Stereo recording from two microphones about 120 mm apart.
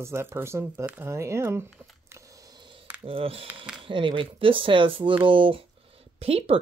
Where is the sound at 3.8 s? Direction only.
45° right (ahead or behind).